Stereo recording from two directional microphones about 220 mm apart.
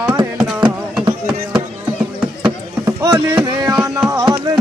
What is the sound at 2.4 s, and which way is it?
Chop, 15° right (ahead or behind).